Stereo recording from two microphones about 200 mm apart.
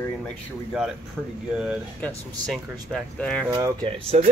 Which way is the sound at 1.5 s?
5° right (ahead or behind).